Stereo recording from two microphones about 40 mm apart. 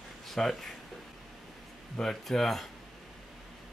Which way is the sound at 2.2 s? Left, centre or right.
Centre.